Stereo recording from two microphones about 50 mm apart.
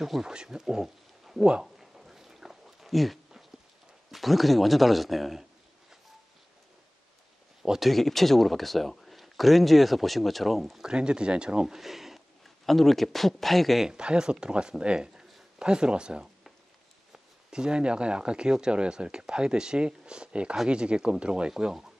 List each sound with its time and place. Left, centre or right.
0.0 s speech: centre
1.5 s a sound: centre
4.1 s a man's voice: centre
7.6 s speech: centre
7.9 s speech: centre
10.8 s speech: centre
11.6 s speech: centre
13.8 s speech: centre